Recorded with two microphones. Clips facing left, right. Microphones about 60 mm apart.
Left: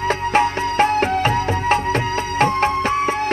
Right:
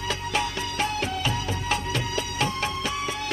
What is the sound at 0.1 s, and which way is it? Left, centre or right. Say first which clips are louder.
Music: left 10 dB; left.